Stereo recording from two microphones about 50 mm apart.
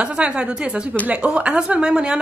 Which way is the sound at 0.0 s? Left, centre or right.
Right.